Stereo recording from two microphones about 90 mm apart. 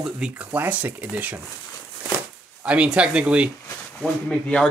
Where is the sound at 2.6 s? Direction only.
15° right (ahead or behind).